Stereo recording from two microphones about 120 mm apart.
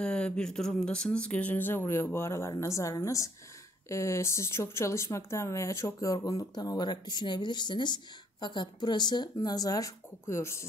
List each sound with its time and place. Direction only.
0.0 s speech: 5° left (ahead or behind); by 10.7 s 25° left (ahead or behind)